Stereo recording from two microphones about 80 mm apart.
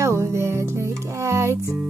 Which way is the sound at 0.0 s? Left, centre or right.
Right.